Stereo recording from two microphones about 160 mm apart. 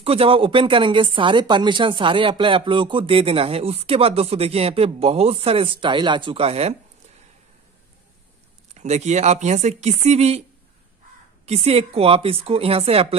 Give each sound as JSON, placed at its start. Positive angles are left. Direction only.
{"t": 0.0, "sound": "speech", "side_deg": -35}
{"t": 8.7, "sound": "speech", "side_deg": -45}
{"t": 11.4, "sound": "speech", "side_deg": -40}